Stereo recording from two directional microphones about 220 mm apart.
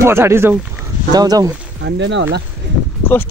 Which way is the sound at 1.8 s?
55° right (ahead or behind).